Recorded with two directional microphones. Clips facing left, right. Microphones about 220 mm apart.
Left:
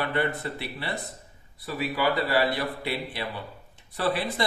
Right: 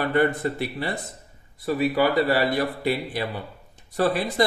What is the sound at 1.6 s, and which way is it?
A man's voice, 50° right (ahead or behind).